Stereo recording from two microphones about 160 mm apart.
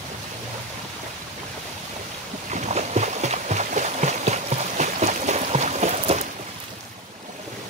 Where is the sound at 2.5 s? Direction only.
45° right (ahead or behind).